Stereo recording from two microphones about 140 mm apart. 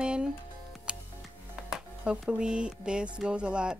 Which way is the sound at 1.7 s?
10° right (ahead or behind).